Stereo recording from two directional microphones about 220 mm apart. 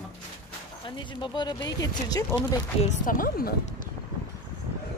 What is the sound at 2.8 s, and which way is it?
Speech, 40° left (ahead or behind).